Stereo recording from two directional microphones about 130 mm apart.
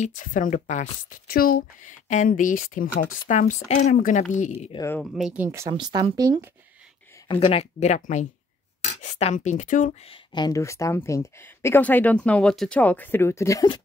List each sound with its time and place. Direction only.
0.0 s speech: 85° left
1.3 s speech: 90° left; by 3.9 s 60° left (ahead or behind)
3.9 s speech: 80° left
5.1 s speech: 5° right (ahead or behind)
5.4 s speech: 20° right (ahead or behind)
5.7 s speech: 35° right (ahead or behind)
7.2 s speech: 45° left (ahead or behind); by 9.9 s 85° left
10.0 s speech: 35° left (ahead or behind)
10.6 s speech: 20° left (ahead or behind)